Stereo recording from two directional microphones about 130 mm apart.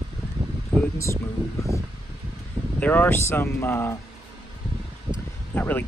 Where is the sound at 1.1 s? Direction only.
25° right (ahead or behind).